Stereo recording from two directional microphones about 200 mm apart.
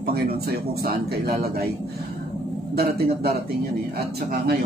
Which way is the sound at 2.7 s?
50° right (ahead or behind).